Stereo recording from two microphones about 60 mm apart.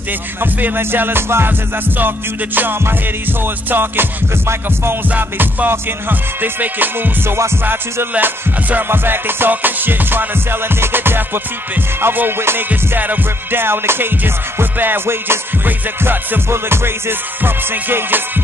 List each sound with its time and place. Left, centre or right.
0.4 s music: right
5.1 s music: right
12.6 s music: right